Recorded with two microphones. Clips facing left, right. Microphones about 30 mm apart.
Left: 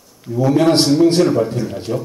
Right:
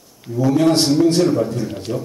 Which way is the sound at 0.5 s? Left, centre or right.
Left.